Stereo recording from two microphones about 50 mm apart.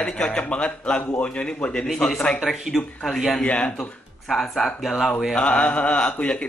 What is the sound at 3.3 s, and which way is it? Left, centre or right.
Speech, left.